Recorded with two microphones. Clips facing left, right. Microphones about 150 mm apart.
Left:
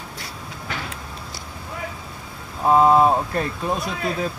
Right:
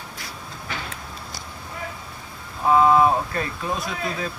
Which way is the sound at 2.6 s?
30° left (ahead or behind).